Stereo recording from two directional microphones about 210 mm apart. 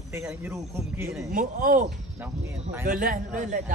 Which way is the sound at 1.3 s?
40° right (ahead or behind).